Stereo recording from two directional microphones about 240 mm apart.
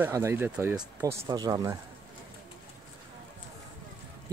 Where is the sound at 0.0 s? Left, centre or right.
Centre.